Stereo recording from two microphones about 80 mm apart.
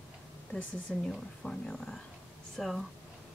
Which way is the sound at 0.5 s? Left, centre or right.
Centre.